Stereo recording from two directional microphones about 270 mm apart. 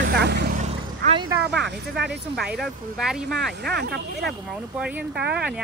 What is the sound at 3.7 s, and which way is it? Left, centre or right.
Speech, right.